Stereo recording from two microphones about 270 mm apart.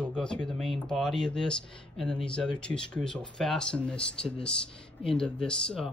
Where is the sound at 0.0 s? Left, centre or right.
Centre.